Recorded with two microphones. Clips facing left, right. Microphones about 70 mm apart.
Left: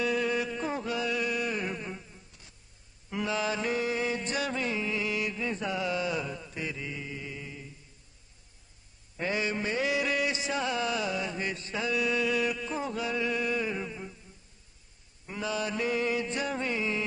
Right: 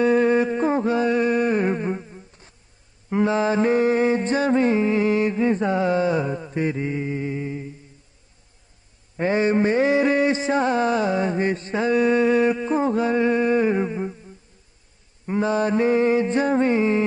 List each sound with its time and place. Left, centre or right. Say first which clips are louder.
0.0 s mantra: right 11 dB; right
9.1 s a sound: right 11 dB; right
15.2 s mantra: right 11 dB; right